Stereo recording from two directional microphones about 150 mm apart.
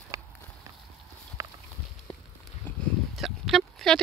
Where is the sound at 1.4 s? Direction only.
20° right (ahead or behind).